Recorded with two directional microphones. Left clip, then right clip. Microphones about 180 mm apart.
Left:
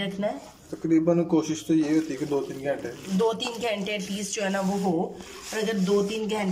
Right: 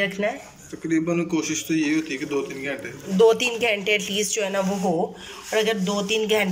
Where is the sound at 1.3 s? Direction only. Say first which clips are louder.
Even; 40° left (ahead or behind).